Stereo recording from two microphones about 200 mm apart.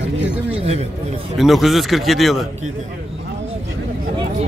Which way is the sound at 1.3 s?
Centre (ahead or behind).